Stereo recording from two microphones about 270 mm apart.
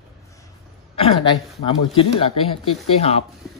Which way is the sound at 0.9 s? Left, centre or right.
Left.